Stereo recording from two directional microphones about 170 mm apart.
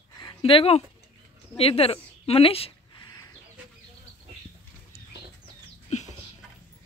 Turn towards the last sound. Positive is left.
turn(degrees=45)  # may be behind; listen again after turning